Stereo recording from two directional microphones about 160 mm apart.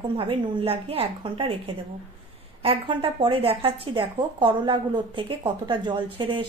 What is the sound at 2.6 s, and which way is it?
A woman's voice, 35° right (ahead or behind).